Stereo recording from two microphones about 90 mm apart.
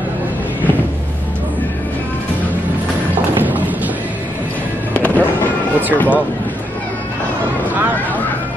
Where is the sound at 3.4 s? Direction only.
20° right (ahead or behind).